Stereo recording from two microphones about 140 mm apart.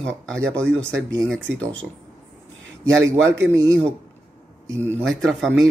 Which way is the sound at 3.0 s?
20° right (ahead or behind).